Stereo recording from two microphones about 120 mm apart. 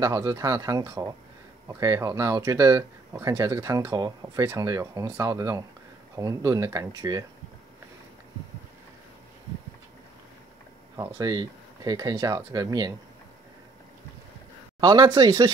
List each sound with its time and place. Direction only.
0.0 s speech: 30° right (ahead or behind)
11.1 s speech: 35° right (ahead or behind)
14.8 s speech: 35° right (ahead or behind)